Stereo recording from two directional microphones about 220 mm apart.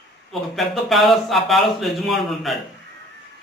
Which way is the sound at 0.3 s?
Centre (ahead or behind).